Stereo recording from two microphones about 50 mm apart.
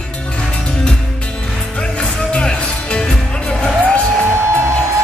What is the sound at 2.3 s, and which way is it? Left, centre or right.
Music, centre.